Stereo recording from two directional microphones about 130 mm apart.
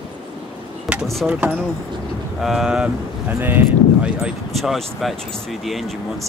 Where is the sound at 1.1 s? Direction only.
Centre (ahead or behind).